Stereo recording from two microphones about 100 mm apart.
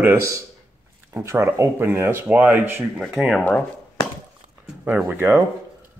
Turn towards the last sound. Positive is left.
turn(degrees=-20)  # may be behind; listen again after turning